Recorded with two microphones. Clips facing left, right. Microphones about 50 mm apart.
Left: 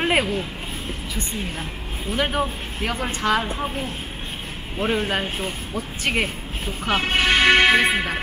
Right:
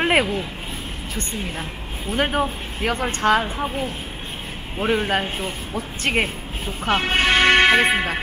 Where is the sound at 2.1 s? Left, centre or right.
Right.